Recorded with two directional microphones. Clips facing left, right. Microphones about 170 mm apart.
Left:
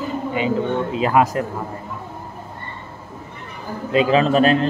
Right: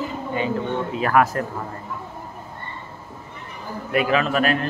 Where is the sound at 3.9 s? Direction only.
25° left (ahead or behind).